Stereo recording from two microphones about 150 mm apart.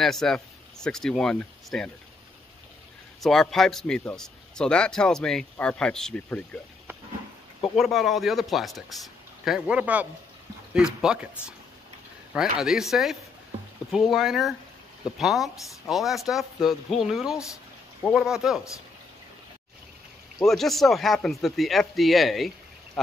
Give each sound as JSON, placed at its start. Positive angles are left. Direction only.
{"t": 0.0, "sound": "a man's voice", "side_deg": 5}
{"t": 3.2, "sound": "a man's voice", "side_deg": 0}
{"t": 7.7, "sound": "a man's voice", "side_deg": 0}
{"t": 12.4, "sound": "a man's voice", "side_deg": -5}
{"t": 20.4, "sound": "a man's voice", "side_deg": 0}